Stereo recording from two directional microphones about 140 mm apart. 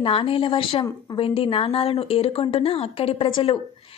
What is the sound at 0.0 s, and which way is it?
A woman's voice, 40° left (ahead or behind).